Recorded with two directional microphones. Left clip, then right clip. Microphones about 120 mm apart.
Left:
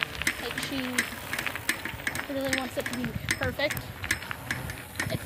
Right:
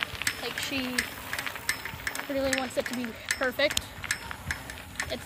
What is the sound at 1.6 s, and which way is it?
Mechanisms, 10° right (ahead or behind).